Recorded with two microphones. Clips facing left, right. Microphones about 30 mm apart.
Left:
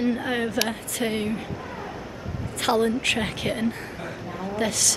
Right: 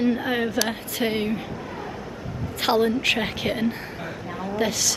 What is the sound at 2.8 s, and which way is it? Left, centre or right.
A woman's voice, centre.